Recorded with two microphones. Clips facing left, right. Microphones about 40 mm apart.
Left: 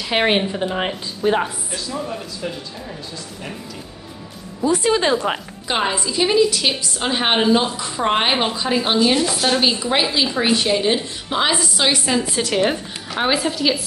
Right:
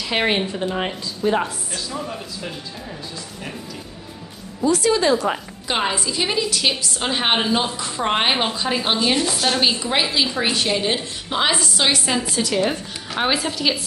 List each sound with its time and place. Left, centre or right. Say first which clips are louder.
0.0 s speech: left 2 dB; centre
1.9 s a woman's voice: left 4 dB; centre
4.6 s speech: even; left
5.7 s a woman's voice: left 1 dB; centre